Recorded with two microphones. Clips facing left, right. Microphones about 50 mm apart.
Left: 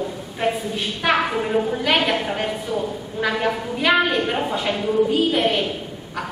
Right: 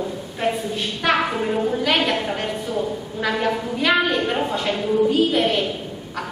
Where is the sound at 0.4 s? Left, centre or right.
Centre.